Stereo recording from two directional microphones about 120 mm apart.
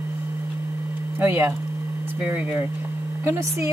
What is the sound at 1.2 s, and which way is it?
Speech, 15° right (ahead or behind).